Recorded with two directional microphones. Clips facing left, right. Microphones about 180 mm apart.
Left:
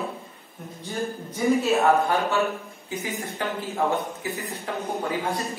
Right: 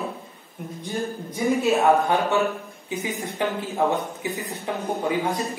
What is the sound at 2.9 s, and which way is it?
A woman's voice, 20° right (ahead or behind).